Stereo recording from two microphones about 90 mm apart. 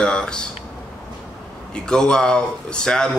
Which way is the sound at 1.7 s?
10° left (ahead or behind).